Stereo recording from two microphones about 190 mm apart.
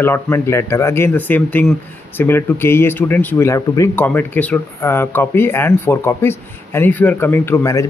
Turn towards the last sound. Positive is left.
turn(degrees=15)  # may be behind; listen again after turning